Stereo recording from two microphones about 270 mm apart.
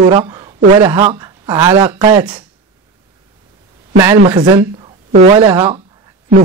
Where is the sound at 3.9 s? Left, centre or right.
Centre.